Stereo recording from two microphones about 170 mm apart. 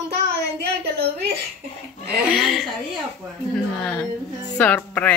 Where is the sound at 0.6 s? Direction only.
80° right.